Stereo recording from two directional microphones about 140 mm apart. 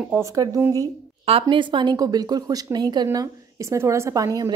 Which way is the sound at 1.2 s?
40° right (ahead or behind).